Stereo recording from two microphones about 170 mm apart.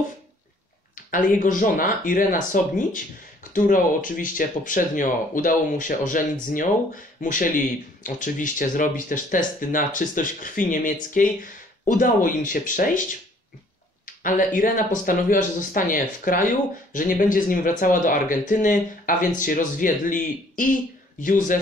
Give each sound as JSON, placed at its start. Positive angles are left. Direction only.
{"t": 0.9, "sound": "speech", "side_deg": 50}
{"t": 14.0, "sound": "speech", "side_deg": 50}